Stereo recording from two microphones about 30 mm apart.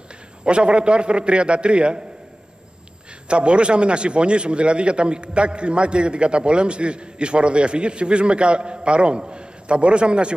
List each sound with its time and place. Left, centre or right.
0.5 s a man's voice: right
3.3 s a man's voice: right